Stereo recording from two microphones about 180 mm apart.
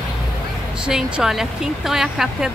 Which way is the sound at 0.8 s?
5° right (ahead or behind).